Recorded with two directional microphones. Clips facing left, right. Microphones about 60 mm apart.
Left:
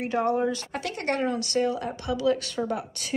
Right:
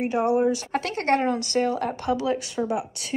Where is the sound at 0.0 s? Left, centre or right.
Centre.